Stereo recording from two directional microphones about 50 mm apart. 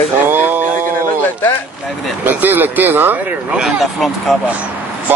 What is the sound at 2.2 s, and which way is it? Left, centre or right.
Speech, right.